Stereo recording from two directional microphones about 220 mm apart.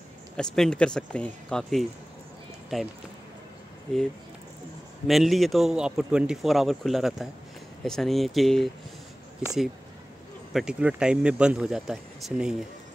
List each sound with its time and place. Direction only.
0.4 s a man's voice: 5° left (ahead or behind)
5.0 s a man's voice: centre (ahead or behind)